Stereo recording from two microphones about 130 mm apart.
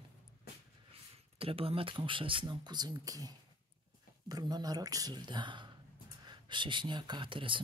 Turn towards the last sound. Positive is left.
turn(degrees=-40)  # may be behind; listen again after turning